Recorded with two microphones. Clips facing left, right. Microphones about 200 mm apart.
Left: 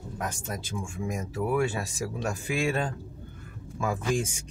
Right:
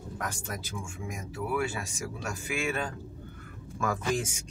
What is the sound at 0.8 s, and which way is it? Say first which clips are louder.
Speech: left 6 dB; 40° left (ahead or behind).